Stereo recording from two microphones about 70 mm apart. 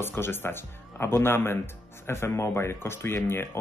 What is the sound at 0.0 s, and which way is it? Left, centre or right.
Speech, left.